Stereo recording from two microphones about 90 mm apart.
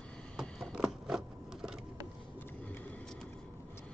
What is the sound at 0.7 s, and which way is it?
Scissors, 5° right (ahead or behind).